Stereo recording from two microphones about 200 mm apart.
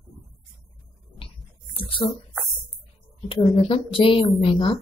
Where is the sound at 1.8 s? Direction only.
25° left (ahead or behind).